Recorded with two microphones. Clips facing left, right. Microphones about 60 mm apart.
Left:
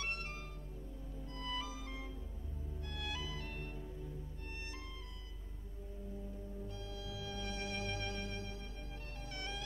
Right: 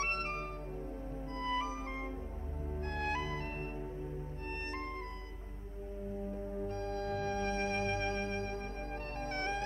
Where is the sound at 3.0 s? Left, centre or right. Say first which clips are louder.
Right 8 dB; right.